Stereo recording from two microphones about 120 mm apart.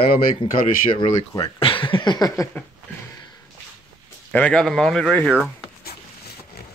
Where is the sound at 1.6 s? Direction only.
45° left (ahead or behind); by 2.5 s 30° left (ahead or behind).